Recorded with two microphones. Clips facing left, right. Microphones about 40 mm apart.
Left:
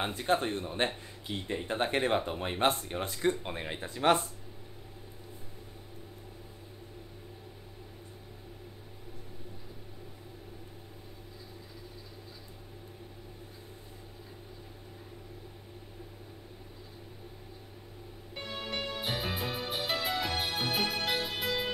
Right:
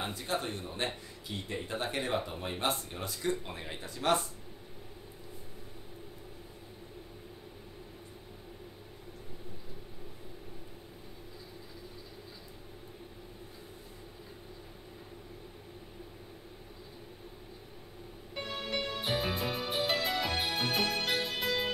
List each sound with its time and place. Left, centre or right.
0.0 s speech: left
18.3 s music: centre